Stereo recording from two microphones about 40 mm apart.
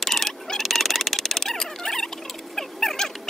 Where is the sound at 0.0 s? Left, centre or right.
Centre.